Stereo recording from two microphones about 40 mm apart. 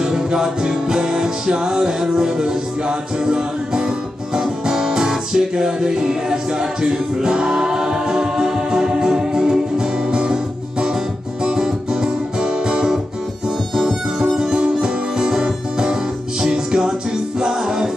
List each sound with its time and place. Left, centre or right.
0.0 s music: centre
14.2 s music: centre